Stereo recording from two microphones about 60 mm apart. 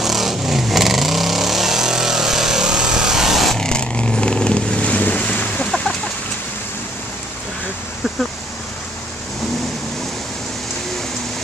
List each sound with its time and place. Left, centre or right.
0.0 s vehicle: centre
3.5 s vehicle: centre